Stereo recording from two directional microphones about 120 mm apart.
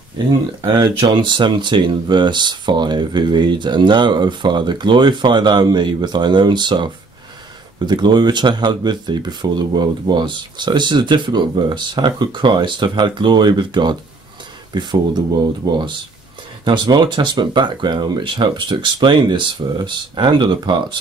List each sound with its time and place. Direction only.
0.6 s speech: 45° right (ahead or behind)